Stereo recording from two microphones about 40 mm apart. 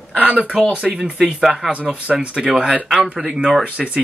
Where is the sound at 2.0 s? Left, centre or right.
Right.